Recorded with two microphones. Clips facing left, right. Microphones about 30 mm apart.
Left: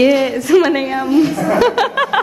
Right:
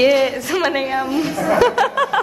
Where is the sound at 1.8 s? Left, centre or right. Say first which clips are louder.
Left 2 dB; left.